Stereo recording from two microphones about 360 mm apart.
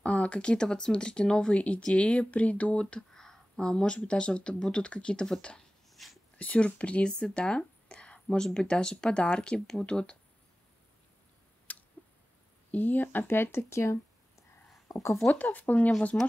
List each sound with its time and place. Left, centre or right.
0.0 s speech: centre
11.7 s a sound: centre
12.7 s speech: centre